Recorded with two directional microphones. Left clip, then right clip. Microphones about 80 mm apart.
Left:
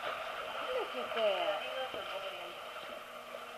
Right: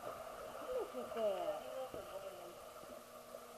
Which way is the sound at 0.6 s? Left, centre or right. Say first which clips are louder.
Left 5 dB; left.